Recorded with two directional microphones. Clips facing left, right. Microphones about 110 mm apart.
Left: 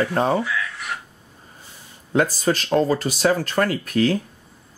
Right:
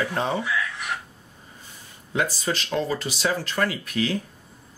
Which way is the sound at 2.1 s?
45° left (ahead or behind).